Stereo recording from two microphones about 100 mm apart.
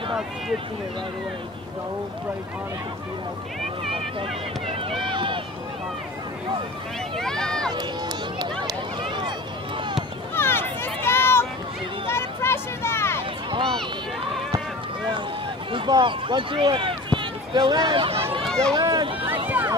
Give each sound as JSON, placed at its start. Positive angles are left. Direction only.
{"t": 3.9, "sound": "speech", "side_deg": -65}
{"t": 7.2, "sound": "run", "side_deg": 5}
{"t": 8.4, "sound": "run", "side_deg": -45}
{"t": 10.3, "sound": "a sound", "side_deg": 25}
{"t": 13.5, "sound": "a sound", "side_deg": -55}
{"t": 15.9, "sound": "speech", "side_deg": -55}
{"t": 18.4, "sound": "speech", "side_deg": 5}
{"t": 18.8, "sound": "speech", "side_deg": -45}